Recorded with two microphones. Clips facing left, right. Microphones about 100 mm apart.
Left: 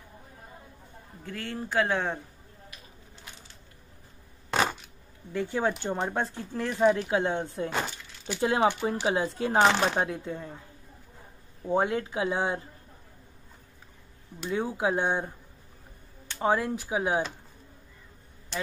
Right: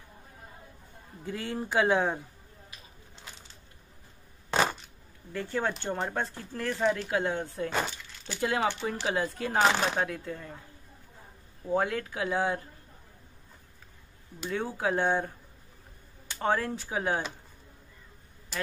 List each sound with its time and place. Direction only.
1.2 s speech: 15° right (ahead or behind)
4.5 s a sound: centre (ahead or behind)
5.3 s speech: 15° left (ahead or behind)
11.6 s speech: 20° left (ahead or behind)
14.5 s speech: 15° left (ahead or behind)
16.3 s speech: 10° left (ahead or behind)